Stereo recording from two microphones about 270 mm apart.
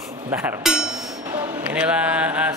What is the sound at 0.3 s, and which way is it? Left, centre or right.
Mantra, centre.